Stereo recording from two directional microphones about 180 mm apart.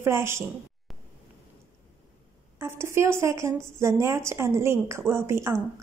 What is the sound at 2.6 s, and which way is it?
Speech, 15° right (ahead or behind).